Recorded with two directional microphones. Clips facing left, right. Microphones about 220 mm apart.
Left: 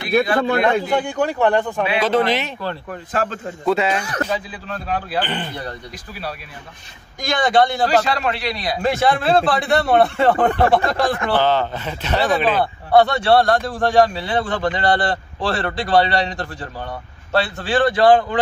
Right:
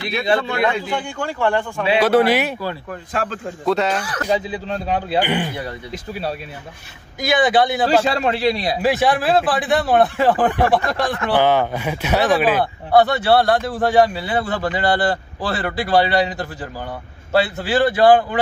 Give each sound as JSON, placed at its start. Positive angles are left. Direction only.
{"t": 0.4, "sound": "a man's voice", "side_deg": 50}
{"t": 1.0, "sound": "speech", "side_deg": 20}
{"t": 2.0, "sound": "a man's voice", "side_deg": -10}
{"t": 3.1, "sound": "a man's voice", "side_deg": 0}
{"t": 4.3, "sound": "a man's voice", "side_deg": -25}
{"t": 5.2, "sound": "a man's voice", "side_deg": -10}
{"t": 7.2, "sound": "a man's voice", "side_deg": -5}
{"t": 8.0, "sound": "a man's voice", "side_deg": -30}
{"t": 8.8, "sound": "a man's voice", "side_deg": 0}
{"t": 11.3, "sound": "a man's voice", "side_deg": -10}